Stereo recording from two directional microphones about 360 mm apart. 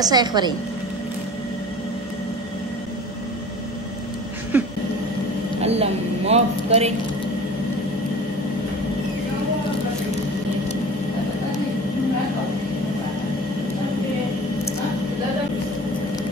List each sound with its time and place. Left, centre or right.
0.0 s a woman's voice: centre
4.5 s vehicle: centre
5.6 s a woman's voice: centre